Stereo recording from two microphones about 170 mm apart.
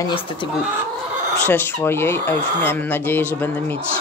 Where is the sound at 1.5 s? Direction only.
15° left (ahead or behind).